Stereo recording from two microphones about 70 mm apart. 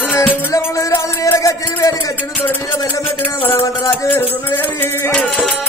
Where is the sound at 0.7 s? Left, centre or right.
Left.